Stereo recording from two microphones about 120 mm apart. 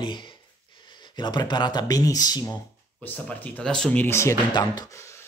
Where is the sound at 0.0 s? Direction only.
40° left (ahead or behind).